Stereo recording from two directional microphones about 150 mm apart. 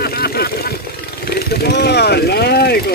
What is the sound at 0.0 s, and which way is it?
Vehicle, 90° left.